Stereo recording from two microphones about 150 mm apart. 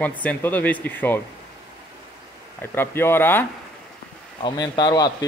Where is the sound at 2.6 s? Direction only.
15° left (ahead or behind).